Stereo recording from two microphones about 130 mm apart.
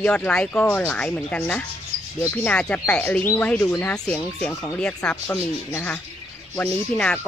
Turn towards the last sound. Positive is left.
turn(degrees=10)  # may be behind; listen again after turning